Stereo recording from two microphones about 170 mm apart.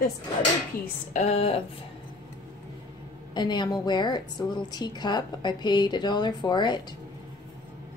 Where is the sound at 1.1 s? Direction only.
40° left (ahead or behind).